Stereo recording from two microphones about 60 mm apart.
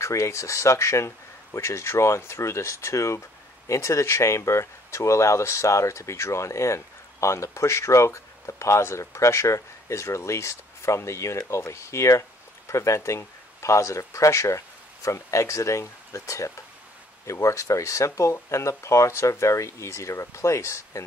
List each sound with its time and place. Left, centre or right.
0.0 s speech: left